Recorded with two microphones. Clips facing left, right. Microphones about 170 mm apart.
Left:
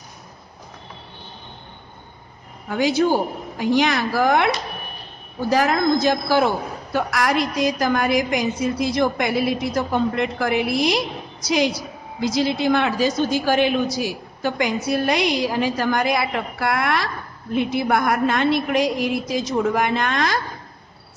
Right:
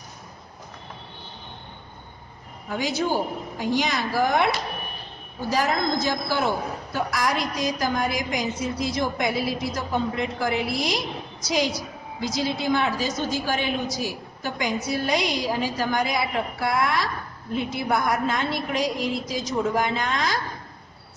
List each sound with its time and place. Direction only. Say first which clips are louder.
3.5 s speech: left 6 dB; 65° left (ahead or behind)
5.5 s a woman's voice: left 5 dB; 65° left (ahead or behind)